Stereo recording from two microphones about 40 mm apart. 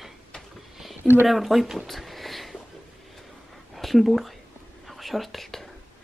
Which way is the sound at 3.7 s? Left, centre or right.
Centre.